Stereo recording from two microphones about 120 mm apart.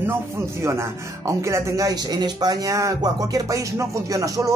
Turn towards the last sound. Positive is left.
turn(degrees=-30)  # may be behind; listen again after turning